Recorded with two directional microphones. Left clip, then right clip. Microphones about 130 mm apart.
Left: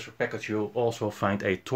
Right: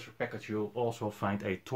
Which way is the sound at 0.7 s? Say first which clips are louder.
Left 8 dB; 30° left (ahead or behind).